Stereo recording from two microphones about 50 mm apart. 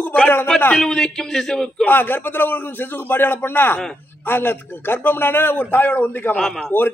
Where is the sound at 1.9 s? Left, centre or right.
Left.